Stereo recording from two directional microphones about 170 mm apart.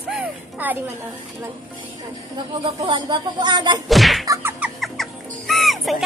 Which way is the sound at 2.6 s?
25° right (ahead or behind).